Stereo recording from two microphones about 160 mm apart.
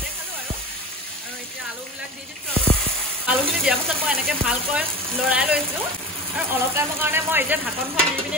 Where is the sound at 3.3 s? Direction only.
5° right (ahead or behind).